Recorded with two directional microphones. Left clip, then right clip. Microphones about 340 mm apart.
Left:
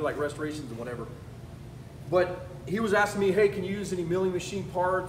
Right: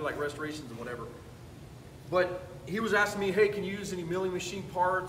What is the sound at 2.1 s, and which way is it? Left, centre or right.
A man's voice, centre.